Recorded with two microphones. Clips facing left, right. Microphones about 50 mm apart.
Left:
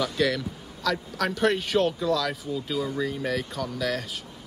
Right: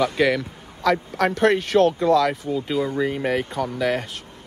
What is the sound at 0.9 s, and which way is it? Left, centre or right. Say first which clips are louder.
Speech: right 6 dB; right.